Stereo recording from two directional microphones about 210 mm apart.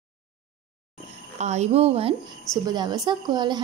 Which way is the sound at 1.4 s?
35° right (ahead or behind).